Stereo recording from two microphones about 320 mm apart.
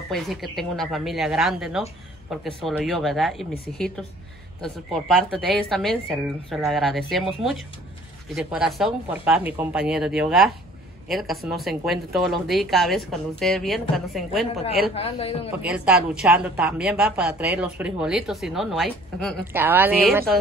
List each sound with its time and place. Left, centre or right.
0.1 s a woman's voice: centre
15.0 s a man's voice: centre
15.6 s a woman's voice: centre